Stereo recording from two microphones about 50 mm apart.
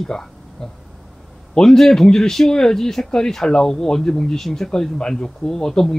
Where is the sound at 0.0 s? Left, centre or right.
Centre.